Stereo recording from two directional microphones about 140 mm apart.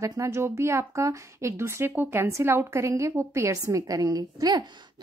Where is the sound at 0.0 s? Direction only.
25° right (ahead or behind).